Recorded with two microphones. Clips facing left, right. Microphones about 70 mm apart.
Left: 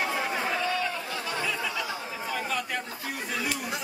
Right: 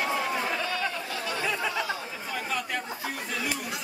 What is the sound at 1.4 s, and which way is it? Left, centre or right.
Chatter, centre.